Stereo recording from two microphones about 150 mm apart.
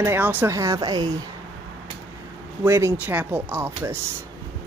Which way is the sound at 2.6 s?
15° right (ahead or behind).